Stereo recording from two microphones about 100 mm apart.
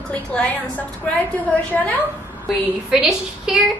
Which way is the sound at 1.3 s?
15° left (ahead or behind).